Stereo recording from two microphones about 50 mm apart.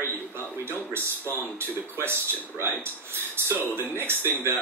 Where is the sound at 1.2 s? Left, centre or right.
Left.